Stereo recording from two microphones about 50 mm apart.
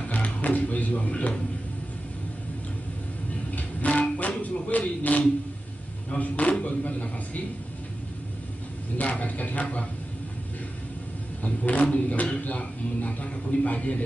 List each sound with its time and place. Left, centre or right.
0.1 s music: left
3.5 s music: left
4.4 s speech: left
8.9 s speech: left
11.4 s speech: left